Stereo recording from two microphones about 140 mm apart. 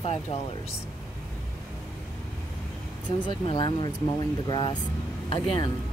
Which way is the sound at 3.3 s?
35° left (ahead or behind).